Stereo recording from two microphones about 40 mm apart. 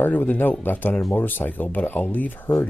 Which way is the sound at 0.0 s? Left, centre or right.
Left.